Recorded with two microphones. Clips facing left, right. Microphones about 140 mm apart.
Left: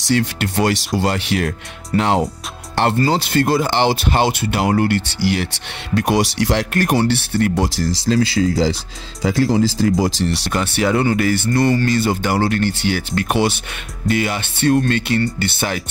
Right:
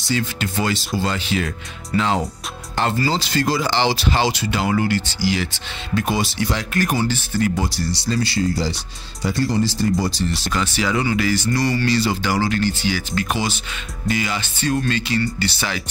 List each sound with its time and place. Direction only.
0.1 s speech: 70° left (ahead or behind)
1.9 s speech: 50° left (ahead or behind)
2.7 s speech: 65° left (ahead or behind)
7.6 s speech: 90° left; by 15.8 s 55° left (ahead or behind)